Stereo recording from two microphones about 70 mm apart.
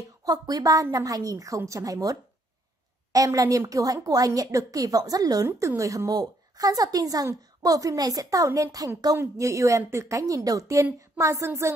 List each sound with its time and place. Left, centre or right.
0.2 s a woman's voice: right
5.6 s a woman's voice: right